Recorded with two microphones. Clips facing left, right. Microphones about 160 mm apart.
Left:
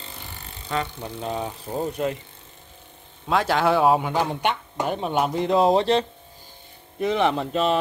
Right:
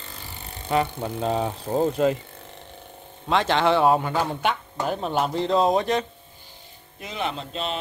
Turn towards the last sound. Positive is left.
turn(degrees=55)  # may be behind; listen again after turning